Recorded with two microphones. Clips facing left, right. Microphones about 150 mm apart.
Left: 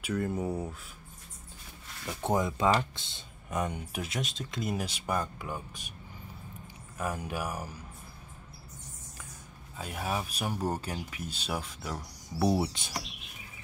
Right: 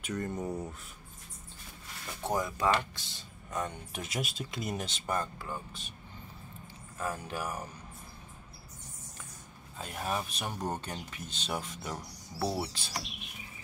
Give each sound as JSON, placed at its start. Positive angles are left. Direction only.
{"t": 0.2, "sound": "speech", "side_deg": 10}
{"t": 2.2, "sound": "speech", "side_deg": 20}
{"t": 4.1, "sound": "speech", "side_deg": -5}
{"t": 7.0, "sound": "speech", "side_deg": 15}
{"t": 9.8, "sound": "speech", "side_deg": 5}
{"t": 12.4, "sound": "speech", "side_deg": 20}